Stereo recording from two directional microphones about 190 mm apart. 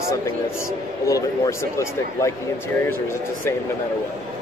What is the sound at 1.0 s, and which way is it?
A man's voice, 15° left (ahead or behind).